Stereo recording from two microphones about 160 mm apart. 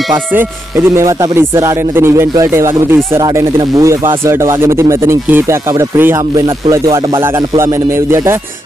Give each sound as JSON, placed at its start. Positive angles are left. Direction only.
{"t": 0.3, "sound": "speech", "side_deg": -10}